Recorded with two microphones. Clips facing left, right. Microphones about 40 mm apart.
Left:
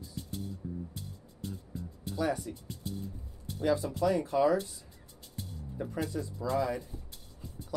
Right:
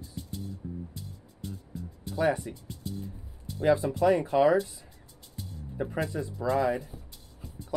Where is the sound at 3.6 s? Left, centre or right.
Right.